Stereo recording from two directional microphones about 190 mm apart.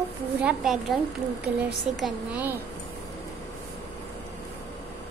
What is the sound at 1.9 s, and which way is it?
Speech, 5° right (ahead or behind).